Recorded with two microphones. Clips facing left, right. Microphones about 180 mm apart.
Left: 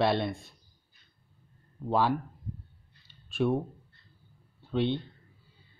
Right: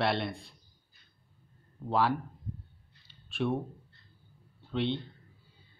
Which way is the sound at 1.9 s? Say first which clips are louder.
Left 2 dB; 15° left (ahead or behind).